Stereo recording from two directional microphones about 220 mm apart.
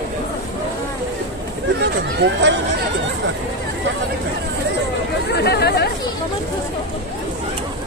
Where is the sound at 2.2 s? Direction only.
55° right (ahead or behind).